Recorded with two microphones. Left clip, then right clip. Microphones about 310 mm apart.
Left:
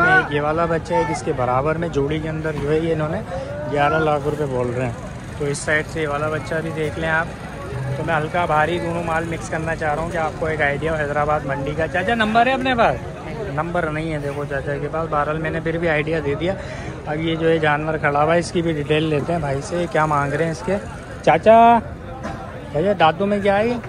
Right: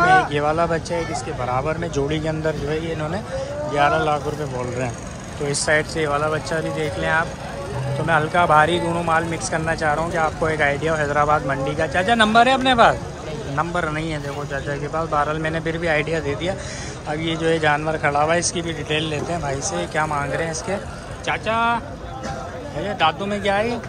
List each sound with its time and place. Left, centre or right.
0.0 s a sound: right
0.3 s speech: centre
21.3 s speech: centre
22.8 s speech: centre